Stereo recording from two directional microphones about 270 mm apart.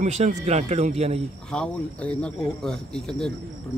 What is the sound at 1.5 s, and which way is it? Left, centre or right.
Speech, centre.